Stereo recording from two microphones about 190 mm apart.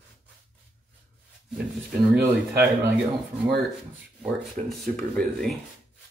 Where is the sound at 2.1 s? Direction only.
60° right (ahead or behind).